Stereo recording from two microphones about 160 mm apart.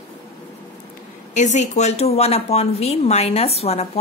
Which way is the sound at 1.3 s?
50° left (ahead or behind).